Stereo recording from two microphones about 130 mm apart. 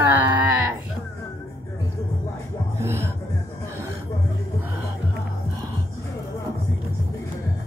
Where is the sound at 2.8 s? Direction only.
20° right (ahead or behind).